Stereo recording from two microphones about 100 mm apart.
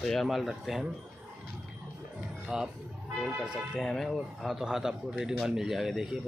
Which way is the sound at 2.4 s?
5° right (ahead or behind).